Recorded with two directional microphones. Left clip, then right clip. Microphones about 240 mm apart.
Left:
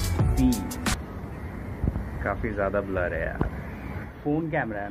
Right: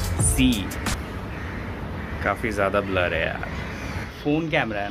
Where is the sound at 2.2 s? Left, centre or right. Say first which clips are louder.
Right 5 dB; centre.